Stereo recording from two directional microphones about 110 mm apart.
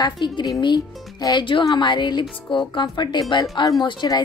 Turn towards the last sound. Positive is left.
turn(degrees=45)  # may be behind; listen again after turning